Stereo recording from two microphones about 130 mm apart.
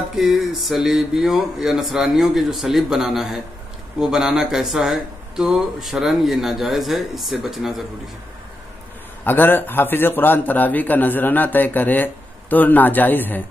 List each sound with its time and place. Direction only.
0.1 s speech: centre (ahead or behind)
9.2 s a man's voice: 15° left (ahead or behind)